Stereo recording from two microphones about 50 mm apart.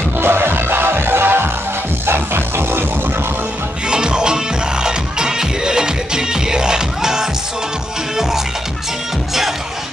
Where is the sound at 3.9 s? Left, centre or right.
Centre.